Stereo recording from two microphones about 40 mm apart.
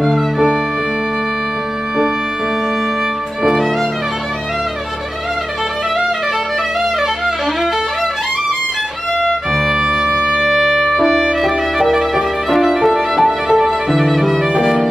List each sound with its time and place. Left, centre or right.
0.0 s music: centre
9.2 s music: centre
9.8 s music: centre
10.4 s music: centre